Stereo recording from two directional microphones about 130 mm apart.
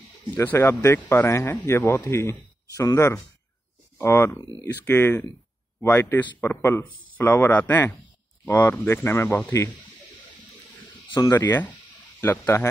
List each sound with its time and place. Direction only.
0.3 s speech: 15° left (ahead or behind)
11.1 s speech: 30° left (ahead or behind)
11.3 s speech: 15° left (ahead or behind)